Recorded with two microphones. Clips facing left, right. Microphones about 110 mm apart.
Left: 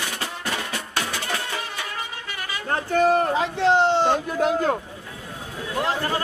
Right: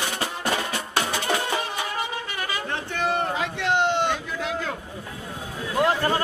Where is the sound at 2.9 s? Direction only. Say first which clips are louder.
Left 7 dB; 35° left (ahead or behind).